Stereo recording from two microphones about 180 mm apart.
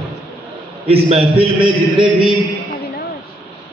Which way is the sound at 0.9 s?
35° right (ahead or behind).